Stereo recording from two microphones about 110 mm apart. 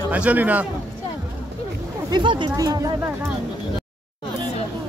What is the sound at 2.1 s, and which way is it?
Speech, 45° right (ahead or behind).